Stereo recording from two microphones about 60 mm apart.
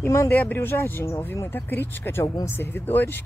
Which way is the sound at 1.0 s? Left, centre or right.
Left.